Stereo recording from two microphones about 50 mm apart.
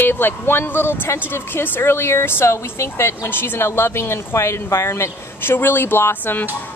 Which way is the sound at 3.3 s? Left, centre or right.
Left.